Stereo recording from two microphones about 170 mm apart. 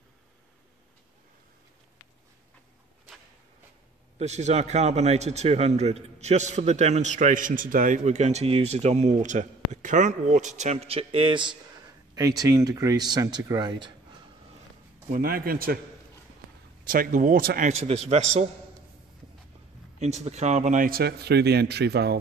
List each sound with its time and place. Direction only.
4.2 s a man's voice: 40° right (ahead or behind); by 13.9 s 25° right (ahead or behind)
15.0 s speech: 60° right (ahead or behind)
16.8 s speech: 55° right (ahead or behind)
17.6 s a man's voice: 40° right (ahead or behind)
20.0 s a man's voice: 40° right (ahead or behind); by 22.2 s 75° right (ahead or behind)